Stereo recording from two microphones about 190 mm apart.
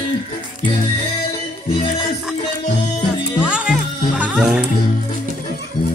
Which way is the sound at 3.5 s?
5° right (ahead or behind).